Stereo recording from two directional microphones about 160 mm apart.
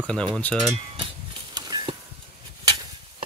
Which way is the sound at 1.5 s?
25° right (ahead or behind).